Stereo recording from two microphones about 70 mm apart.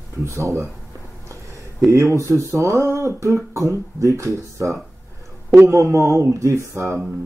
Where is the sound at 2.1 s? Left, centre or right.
Right.